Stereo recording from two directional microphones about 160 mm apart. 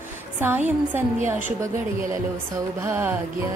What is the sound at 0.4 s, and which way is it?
Music, 15° right (ahead or behind).